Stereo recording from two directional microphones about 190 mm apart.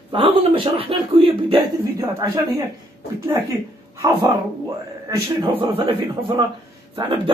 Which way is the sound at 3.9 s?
15° right (ahead or behind).